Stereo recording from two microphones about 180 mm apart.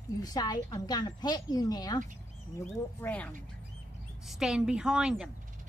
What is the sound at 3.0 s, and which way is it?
Speech, 10° left (ahead or behind).